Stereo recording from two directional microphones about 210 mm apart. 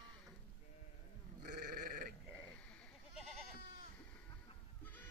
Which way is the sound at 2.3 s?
5° left (ahead or behind).